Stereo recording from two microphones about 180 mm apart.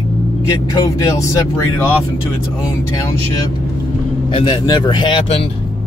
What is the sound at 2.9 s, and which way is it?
Speech, 20° left (ahead or behind).